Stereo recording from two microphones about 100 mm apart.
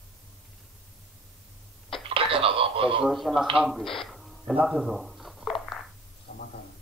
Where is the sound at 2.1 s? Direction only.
65° right (ahead or behind).